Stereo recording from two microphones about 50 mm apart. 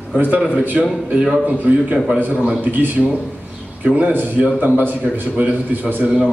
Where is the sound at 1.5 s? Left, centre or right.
Right.